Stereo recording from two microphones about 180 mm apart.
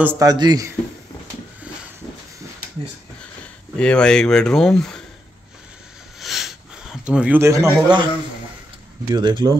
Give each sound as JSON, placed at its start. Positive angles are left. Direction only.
{"t": 0.0, "sound": "a man's voice", "side_deg": -15}
{"t": 3.7, "sound": "speech", "side_deg": 5}
{"t": 6.1, "sound": "sniff", "side_deg": 0}
{"t": 9.1, "sound": "a man's voice", "side_deg": -25}